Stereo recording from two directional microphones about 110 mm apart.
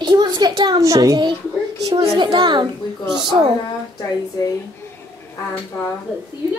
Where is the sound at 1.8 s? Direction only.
35° right (ahead or behind).